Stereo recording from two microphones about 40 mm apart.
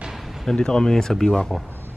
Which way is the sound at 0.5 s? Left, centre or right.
Centre.